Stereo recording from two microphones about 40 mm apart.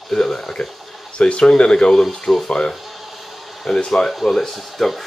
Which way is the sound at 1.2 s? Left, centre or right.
Centre.